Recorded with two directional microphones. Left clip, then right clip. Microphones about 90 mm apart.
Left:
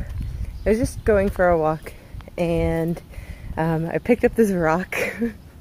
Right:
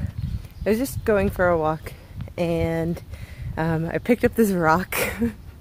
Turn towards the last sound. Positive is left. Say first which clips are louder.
# left 1 dB
turn(degrees=-40)  # may be behind; listen again after turning